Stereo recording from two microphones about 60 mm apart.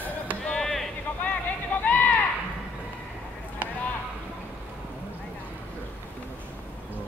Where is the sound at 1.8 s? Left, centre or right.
Left.